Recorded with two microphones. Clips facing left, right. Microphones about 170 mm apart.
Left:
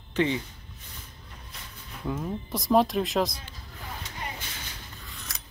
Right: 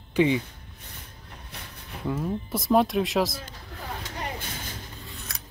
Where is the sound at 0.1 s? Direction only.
15° right (ahead or behind).